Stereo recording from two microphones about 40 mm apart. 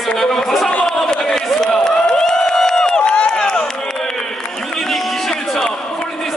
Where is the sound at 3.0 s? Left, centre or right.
Left.